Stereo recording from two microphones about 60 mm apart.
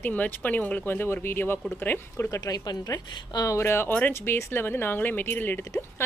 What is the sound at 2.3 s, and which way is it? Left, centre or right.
A woman's voice, left.